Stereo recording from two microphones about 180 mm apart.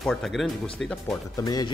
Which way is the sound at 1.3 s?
20° left (ahead or behind).